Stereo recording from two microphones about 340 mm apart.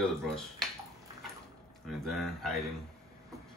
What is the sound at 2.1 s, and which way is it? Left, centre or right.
Speech, centre.